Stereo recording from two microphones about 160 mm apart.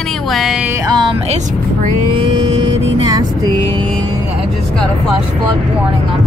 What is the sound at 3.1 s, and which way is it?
Vehicle, 25° right (ahead or behind).